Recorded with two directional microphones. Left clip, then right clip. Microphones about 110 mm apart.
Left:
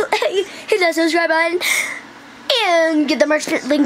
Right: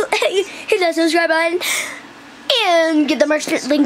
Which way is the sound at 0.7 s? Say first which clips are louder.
Left 1 dB; 10° left (ahead or behind).